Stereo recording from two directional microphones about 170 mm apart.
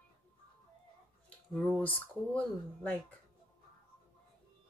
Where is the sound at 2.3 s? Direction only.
10° left (ahead or behind).